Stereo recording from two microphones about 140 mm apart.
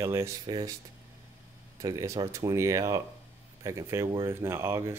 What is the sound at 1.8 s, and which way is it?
Speech, 25° right (ahead or behind).